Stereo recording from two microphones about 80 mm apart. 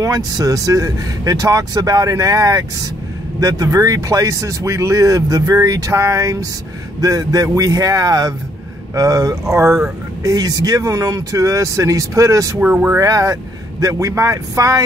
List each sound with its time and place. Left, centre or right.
0.0 s speech: right
10.2 s speech: right
12.5 s speech: centre
13.0 s speech: right